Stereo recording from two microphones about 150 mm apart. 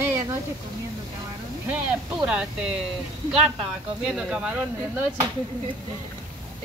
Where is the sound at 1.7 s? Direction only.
10° right (ahead or behind).